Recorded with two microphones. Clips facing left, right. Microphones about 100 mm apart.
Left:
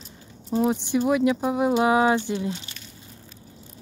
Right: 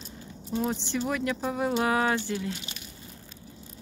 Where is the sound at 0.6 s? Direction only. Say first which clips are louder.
Left 7 dB; 15° left (ahead or behind).